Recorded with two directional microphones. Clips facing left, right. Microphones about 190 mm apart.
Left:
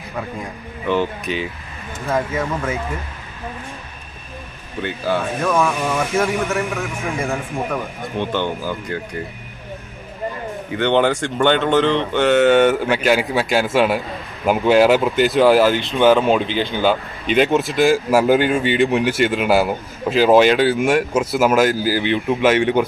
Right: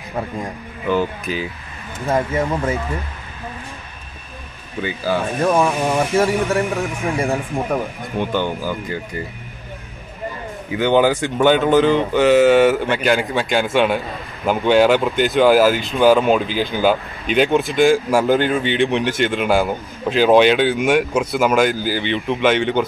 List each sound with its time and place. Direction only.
0.8 s speech: centre (ahead or behind)
4.8 s speech: centre (ahead or behind)
5.4 s a man's voice: 35° right (ahead or behind)
8.2 s speech: 5° right (ahead or behind)
10.7 s speech: 5° right (ahead or behind)